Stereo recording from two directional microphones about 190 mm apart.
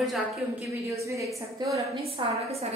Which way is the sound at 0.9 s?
15° right (ahead or behind).